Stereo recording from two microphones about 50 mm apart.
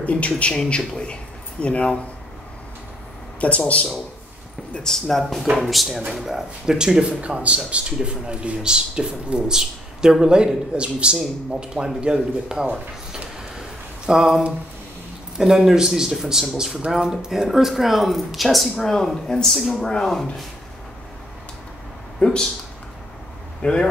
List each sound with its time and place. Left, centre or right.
0.0 s speech: left
0.3 s speech: centre
3.3 s speech: left
4.8 s speech: centre
7.1 s a man's voice: right
14.0 s speech: centre
22.2 s speech: centre
23.6 s speech: centre